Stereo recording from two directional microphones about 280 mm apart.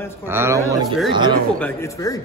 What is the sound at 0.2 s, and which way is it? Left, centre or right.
Speech, centre.